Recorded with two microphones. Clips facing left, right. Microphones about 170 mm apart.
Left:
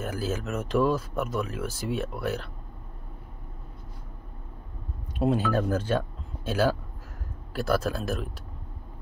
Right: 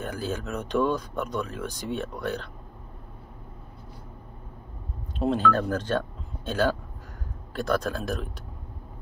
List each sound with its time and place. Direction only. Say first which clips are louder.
0.0 s speech: left 1 dB; 5° left (ahead or behind)
5.2 s speech: right 1 dB; 10° left (ahead or behind)